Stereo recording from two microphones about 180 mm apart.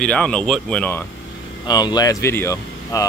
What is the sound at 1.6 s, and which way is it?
Speech, 20° left (ahead or behind).